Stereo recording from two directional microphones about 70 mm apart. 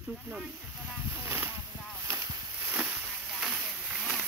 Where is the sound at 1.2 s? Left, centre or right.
Right.